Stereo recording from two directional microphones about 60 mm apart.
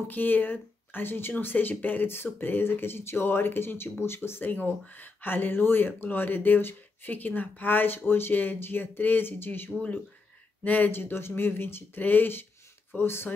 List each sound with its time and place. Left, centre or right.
0.1 s speech: left